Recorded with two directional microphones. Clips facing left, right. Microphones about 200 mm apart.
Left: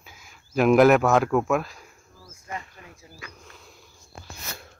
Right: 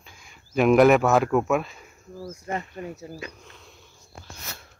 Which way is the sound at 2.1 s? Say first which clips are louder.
Right 7 dB; 40° right (ahead or behind).